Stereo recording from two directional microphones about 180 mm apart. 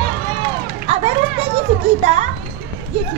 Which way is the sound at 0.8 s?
35° right (ahead or behind).